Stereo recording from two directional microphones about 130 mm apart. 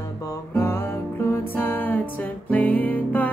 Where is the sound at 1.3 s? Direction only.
15° left (ahead or behind).